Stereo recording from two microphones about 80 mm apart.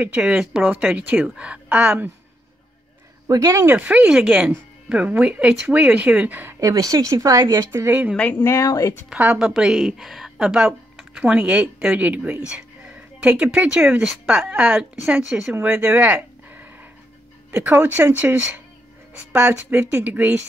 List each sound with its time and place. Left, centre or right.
0.0 s speech: centre
0.6 s speech: centre
3.3 s speech: right
3.5 s speech: right
6.6 s speech: right
8.2 s speech: left
8.5 s speech: left
9.1 s speech: centre
15.6 s speech: right